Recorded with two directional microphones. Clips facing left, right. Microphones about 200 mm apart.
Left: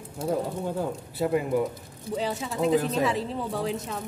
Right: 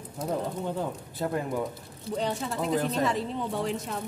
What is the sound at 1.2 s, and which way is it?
A man's voice, 10° left (ahead or behind).